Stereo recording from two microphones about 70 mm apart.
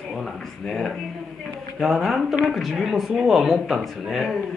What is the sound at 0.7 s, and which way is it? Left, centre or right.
Speech, centre.